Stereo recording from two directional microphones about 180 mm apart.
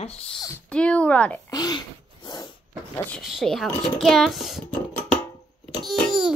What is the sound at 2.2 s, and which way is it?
Dog, 25° left (ahead or behind).